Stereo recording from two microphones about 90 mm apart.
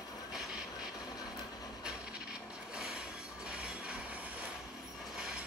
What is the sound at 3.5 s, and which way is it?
Mechanisms, 10° right (ahead or behind).